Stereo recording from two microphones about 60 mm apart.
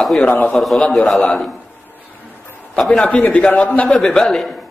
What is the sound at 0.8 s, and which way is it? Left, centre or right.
Speech, centre.